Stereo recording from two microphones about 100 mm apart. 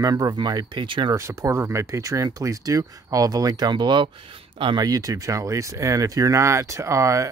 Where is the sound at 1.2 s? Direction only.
30° right (ahead or behind).